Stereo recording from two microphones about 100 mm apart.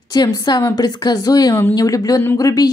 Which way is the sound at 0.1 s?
40° left (ahead or behind).